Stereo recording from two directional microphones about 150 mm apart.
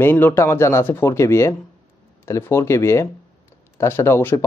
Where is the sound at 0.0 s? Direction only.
15° left (ahead or behind).